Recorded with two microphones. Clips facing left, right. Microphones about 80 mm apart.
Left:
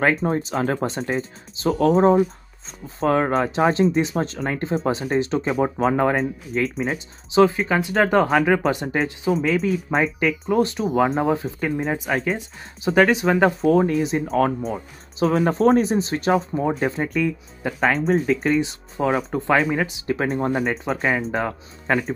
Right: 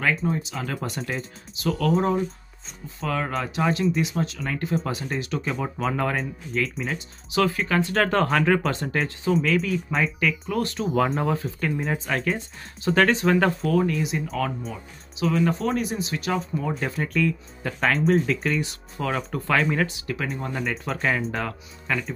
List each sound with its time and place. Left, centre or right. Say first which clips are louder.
0.0 s speech: left 5 dB; left
6.1 s speech: left 4 dB; left
7.3 s speech: left 5 dB; left
9.7 s speech: left 4 dB; left
10.5 s speech: left 5 dB; centre
17.8 s speech: left 1 dB; centre
18.6 s speech: left 6 dB; left
20.1 s speech: left 8 dB; left
20.9 s speech: left 1 dB; centre
21.4 s speech: left 5 dB; left